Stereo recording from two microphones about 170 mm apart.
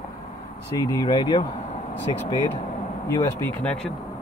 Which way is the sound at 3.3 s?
10° left (ahead or behind).